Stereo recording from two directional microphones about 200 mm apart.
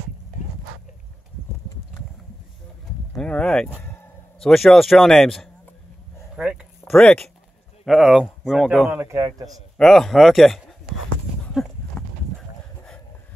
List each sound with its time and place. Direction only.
3.2 s speech: 5° left (ahead or behind)
6.3 s a sound: 5° right (ahead or behind)
6.9 s speech: 5° left (ahead or behind)
9.0 s a man's voice: 15° right (ahead or behind)
9.8 s speech: centre (ahead or behind)
11.5 s horse: 5° left (ahead or behind)